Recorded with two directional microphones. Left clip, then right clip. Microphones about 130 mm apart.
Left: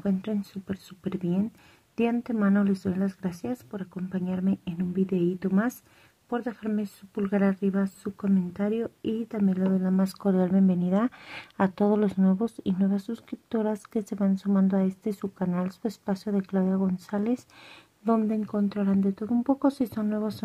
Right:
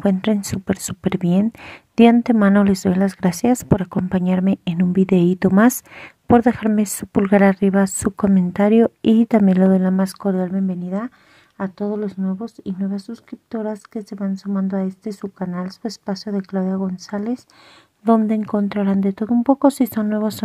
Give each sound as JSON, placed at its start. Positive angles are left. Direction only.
{"t": 0.0, "sound": "speech", "side_deg": -55}
{"t": 10.0, "sound": "speech", "side_deg": -25}
{"t": 10.3, "sound": "speech", "side_deg": -5}
{"t": 18.0, "sound": "speech", "side_deg": -35}